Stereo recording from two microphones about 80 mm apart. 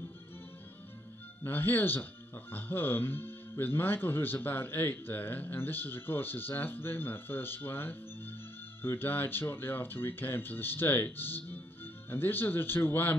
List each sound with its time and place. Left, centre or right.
1.4 s speech: left